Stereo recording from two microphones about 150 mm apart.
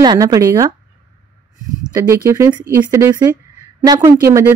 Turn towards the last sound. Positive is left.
turn(degrees=-20)  # may be behind; listen again after turning